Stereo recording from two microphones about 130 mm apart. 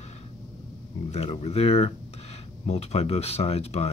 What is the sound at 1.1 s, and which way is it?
Speech, 55° left (ahead or behind).